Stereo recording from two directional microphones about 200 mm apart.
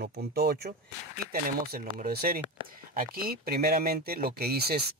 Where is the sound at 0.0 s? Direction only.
50° right (ahead or behind).